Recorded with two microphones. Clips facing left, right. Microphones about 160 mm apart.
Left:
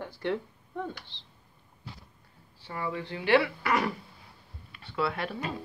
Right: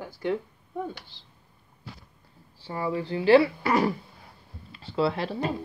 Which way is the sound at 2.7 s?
30° right (ahead or behind).